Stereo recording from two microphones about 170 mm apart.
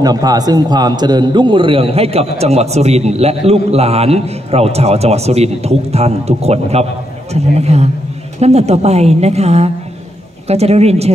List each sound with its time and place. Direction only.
0.0 s a man's voice: 20° right (ahead or behind); by 11.1 s 40° right (ahead or behind)